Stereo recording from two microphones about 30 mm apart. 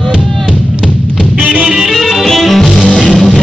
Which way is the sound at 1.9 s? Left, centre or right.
Centre.